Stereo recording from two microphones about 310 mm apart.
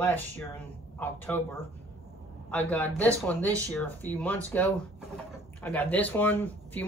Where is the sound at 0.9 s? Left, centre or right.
Centre.